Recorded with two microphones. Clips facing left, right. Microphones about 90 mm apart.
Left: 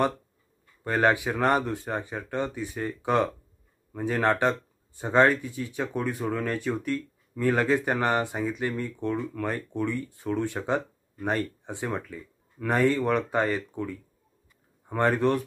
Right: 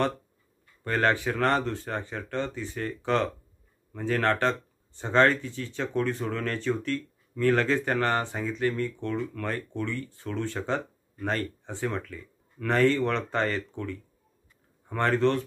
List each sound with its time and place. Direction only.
0.8 s speech: 15° left (ahead or behind)